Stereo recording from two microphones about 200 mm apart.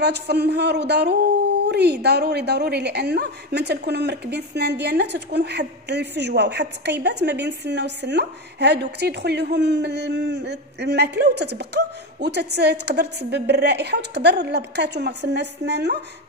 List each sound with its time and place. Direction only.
0.0 s a woman's voice: 55° right (ahead or behind)